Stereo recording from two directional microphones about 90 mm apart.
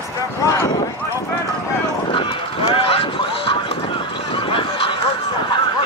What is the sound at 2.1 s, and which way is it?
Run, 85° left.